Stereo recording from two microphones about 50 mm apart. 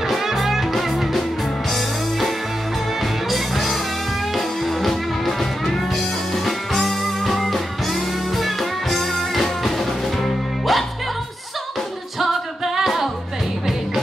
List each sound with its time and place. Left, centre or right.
0.0 s music: centre
12.2 s music: centre